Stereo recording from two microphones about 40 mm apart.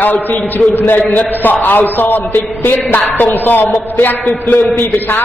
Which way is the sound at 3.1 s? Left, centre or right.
Left.